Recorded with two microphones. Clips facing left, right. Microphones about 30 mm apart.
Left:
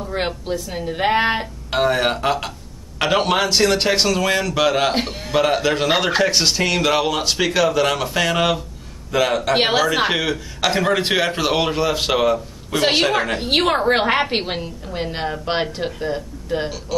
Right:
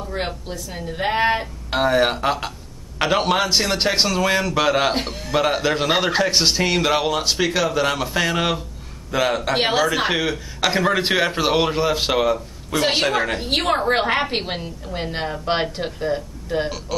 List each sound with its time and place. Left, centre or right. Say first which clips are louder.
0.1 s a woman's voice: left 5 dB; centre
1.7 s a man's voice: even; centre
4.9 s a woman's voice: left 2 dB; centre
5.3 s a man's voice: left 2 dB; centre
6.3 s a man's voice: even; centre
9.5 s a woman's voice: left 2 dB; centre